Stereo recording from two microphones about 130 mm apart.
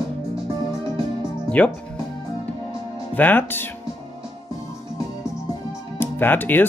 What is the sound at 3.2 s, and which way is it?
Speech, 15° left (ahead or behind).